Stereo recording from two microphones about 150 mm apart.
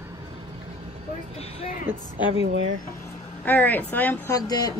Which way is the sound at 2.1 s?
35° left (ahead or behind).